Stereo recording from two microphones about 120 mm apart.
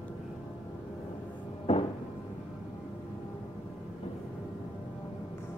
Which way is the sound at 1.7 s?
50° left (ahead or behind).